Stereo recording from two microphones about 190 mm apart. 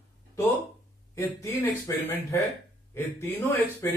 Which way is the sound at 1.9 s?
15° left (ahead or behind).